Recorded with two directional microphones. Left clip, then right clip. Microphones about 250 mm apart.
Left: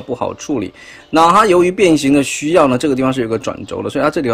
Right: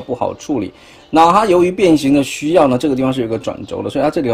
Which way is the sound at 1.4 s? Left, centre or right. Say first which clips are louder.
Left 1 dB; centre.